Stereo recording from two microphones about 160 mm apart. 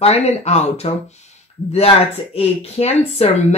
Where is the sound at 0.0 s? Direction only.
40° left (ahead or behind).